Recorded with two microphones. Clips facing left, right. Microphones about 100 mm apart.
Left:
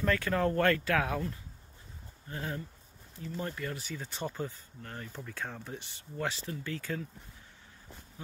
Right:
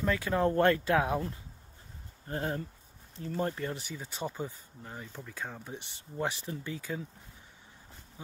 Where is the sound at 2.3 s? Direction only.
40° right (ahead or behind).